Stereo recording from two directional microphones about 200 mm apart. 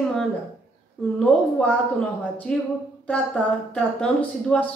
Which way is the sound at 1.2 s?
5° left (ahead or behind).